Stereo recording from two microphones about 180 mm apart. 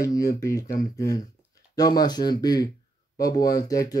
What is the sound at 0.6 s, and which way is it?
Speech, 50° left (ahead or behind).